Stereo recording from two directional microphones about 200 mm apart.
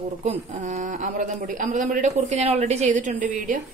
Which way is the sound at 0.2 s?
35° right (ahead or behind).